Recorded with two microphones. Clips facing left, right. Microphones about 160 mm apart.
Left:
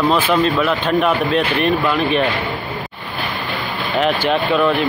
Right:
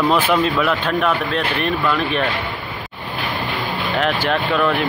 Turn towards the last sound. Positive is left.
turn(degrees=0)  # may be behind; listen again after turning